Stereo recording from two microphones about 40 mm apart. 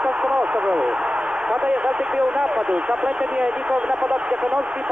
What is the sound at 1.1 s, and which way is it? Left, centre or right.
Speech, right.